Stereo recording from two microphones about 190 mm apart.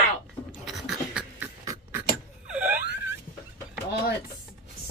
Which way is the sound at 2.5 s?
5° right (ahead or behind).